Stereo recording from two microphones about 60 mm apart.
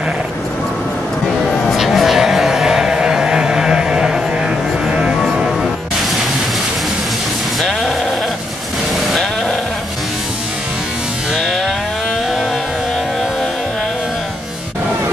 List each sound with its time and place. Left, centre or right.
1.7 s a sound: centre
4.8 s music: centre
11.3 s music: centre